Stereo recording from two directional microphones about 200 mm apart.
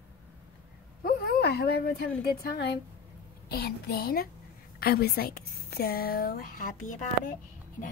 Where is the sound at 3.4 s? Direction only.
50° left (ahead or behind).